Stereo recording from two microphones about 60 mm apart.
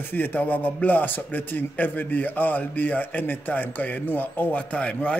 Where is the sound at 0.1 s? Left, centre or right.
Left.